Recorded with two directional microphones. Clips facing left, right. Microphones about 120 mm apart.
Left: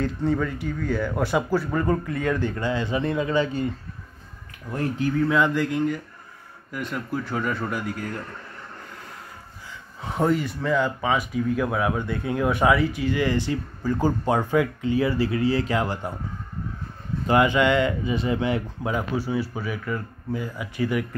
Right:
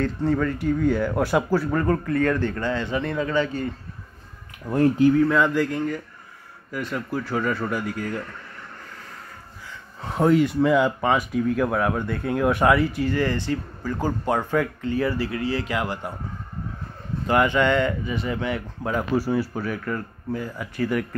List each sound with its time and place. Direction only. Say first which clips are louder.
0.3 s speech: right 2 dB; 10° left (ahead or behind)
0.6 s speech: right 5 dB; 10° right (ahead or behind)
1.7 s a man's voice: right 2 dB; 10° left (ahead or behind)
4.6 s speech: right 8 dB; 35° right (ahead or behind)
5.1 s speech: right 2 dB; centre (ahead or behind)
10.0 s speech: right 4 dB; centre (ahead or behind)
13.1 s a man's voice: even; 10° left (ahead or behind); by 15.9 s 30° left (ahead or behind)
17.3 s speech: even; 15° left (ahead or behind)
18.1 s a man's voice: left 2 dB; 20° left (ahead or behind)
18.8 s speech: right 2 dB; 5° left (ahead or behind)